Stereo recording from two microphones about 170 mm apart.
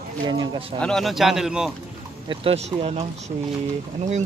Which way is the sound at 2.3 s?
35° right (ahead or behind).